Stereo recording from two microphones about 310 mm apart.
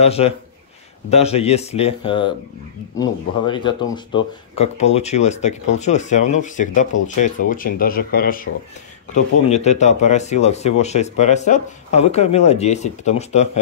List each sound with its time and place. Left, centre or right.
0.0 s speech: centre